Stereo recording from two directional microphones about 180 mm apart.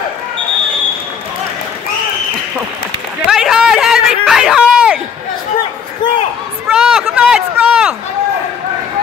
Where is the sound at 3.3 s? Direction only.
Centre (ahead or behind).